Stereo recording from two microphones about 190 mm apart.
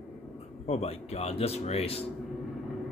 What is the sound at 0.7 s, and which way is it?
Speech, 35° left (ahead or behind).